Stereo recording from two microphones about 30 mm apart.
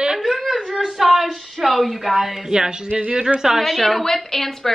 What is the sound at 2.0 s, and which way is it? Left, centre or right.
Speech, centre.